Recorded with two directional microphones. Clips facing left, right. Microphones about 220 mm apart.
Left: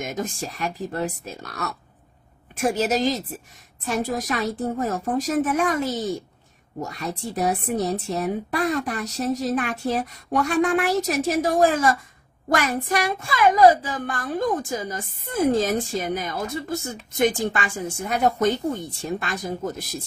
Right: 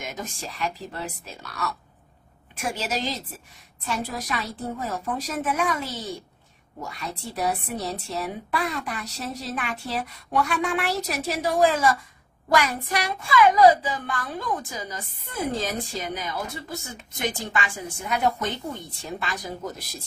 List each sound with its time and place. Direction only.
0.0 s a child's voice: 50° left (ahead or behind)